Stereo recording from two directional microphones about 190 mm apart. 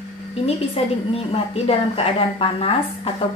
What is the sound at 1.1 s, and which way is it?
A woman's voice, 30° left (ahead or behind).